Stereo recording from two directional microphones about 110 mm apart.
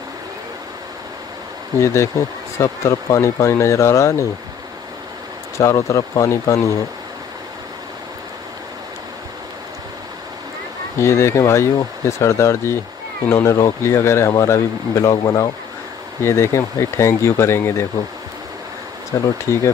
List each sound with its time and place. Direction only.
1.8 s speech: 25° left (ahead or behind)
5.6 s speech: 30° left (ahead or behind)
11.0 s speech: 25° left (ahead or behind)
19.1 s speech: 30° left (ahead or behind)